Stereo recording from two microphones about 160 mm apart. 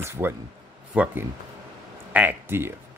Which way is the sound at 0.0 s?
15° right (ahead or behind).